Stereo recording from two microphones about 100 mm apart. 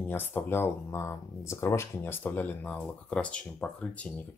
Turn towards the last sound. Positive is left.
turn(degrees=10)  # may be behind; listen again after turning